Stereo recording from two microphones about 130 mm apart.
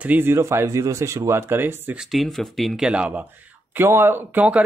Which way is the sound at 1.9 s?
Centre (ahead or behind).